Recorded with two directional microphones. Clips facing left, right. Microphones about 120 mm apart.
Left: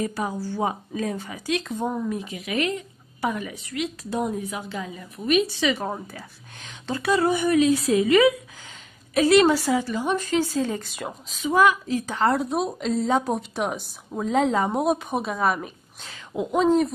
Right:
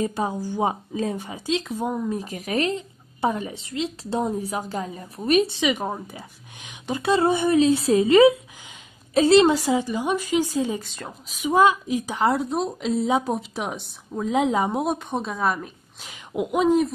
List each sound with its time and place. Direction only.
0.0 s speech: 25° right (ahead or behind)
1.6 s a woman's voice: 5° right (ahead or behind)
2.0 s a woman's voice: 40° right (ahead or behind)
5.6 s a woman's voice: 15° right (ahead or behind)
7.1 s a woman's voice: 25° right (ahead or behind)
10.8 s speech: 5° left (ahead or behind)
11.4 s speech: 25° right (ahead or behind)
12.1 s a woman's voice: 10° right (ahead or behind)
12.4 s speech: 5° left (ahead or behind)
14.3 s a woman's voice: 10° right (ahead or behind)
14.7 s speech: centre (ahead or behind)
16.0 s a woman's voice: 10° right (ahead or behind)